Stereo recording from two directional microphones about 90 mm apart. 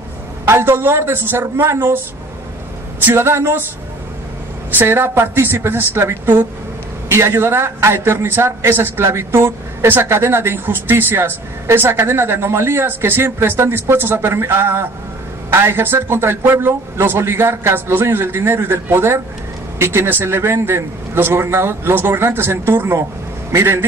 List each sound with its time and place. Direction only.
0.5 s a man's voice: 25° right (ahead or behind)
3.1 s a man's voice: 25° right (ahead or behind)
4.6 s a man's voice: 20° right (ahead or behind)